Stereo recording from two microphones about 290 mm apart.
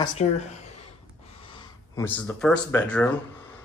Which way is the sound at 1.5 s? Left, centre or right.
Centre.